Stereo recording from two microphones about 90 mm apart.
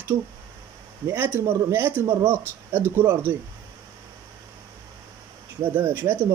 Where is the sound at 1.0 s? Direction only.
25° right (ahead or behind).